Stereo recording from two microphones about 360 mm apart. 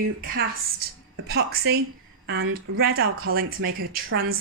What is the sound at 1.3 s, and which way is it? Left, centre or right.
Speech, right.